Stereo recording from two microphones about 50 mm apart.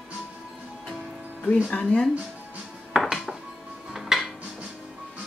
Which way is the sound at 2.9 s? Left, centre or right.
Centre.